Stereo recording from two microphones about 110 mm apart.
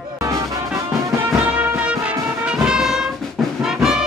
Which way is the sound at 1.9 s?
10° right (ahead or behind).